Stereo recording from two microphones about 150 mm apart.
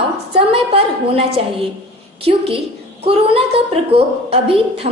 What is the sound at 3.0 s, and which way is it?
Speech, 35° right (ahead or behind).